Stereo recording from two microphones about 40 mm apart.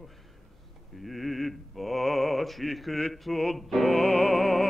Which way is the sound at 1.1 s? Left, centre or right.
Centre.